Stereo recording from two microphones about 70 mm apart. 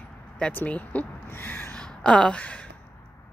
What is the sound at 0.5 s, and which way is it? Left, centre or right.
Speech, left.